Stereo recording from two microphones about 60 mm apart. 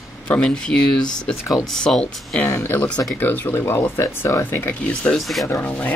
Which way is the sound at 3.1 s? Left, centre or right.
Left.